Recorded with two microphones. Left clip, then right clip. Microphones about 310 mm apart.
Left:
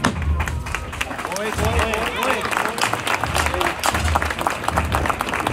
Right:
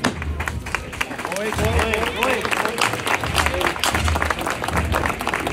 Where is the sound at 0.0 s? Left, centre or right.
Centre.